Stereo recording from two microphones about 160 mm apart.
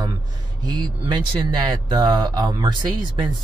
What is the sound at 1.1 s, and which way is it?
Speech, 25° right (ahead or behind).